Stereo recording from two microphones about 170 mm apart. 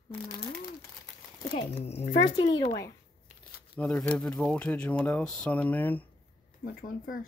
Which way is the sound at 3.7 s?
5° left (ahead or behind).